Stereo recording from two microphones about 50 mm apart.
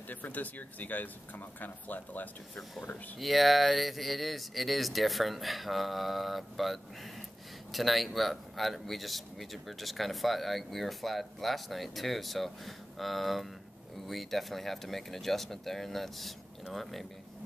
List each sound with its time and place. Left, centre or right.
0.1 s speech: left
3.2 s speech: centre